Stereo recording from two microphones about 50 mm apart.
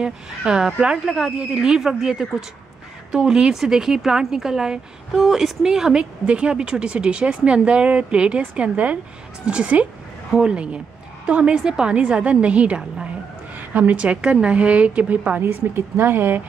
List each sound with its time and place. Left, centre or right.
0.5 s a woman's voice: centre
11.6 s speech: centre
12.2 s a woman's voice: right
13.6 s a woman's voice: right
15.4 s speech: right